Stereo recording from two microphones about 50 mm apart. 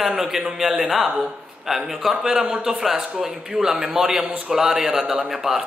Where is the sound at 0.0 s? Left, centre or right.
Centre.